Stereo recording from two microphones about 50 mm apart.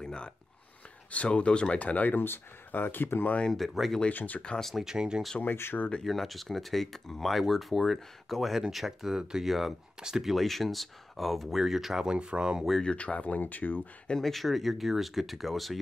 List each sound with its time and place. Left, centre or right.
0.0 s a sound: centre
1.1 s speech: left
3.4 s speech: centre
4.1 s speech: left
4.7 s speech: centre
5.4 s speech: left
6.0 s speech: centre
9.9 s speech: centre
10.2 s speech: centre
12.8 s speech: left
14.0 s speech: centre